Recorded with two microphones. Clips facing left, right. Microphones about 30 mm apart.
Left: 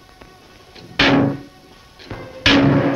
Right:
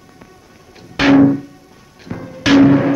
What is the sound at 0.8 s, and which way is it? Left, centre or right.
Music, left.